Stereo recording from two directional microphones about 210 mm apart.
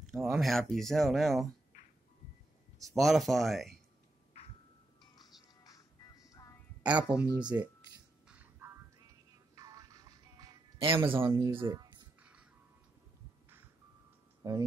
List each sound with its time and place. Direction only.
0.1 s speech: centre (ahead or behind)
2.8 s speech: centre (ahead or behind)
5.1 s music: 20° left (ahead or behind)
6.8 s speech: 5° right (ahead or behind)
8.3 s a sound: 10° right (ahead or behind)
9.6 s music: 15° right (ahead or behind)
12.2 s music: 5° right (ahead or behind)
14.4 s speech: 15° right (ahead or behind)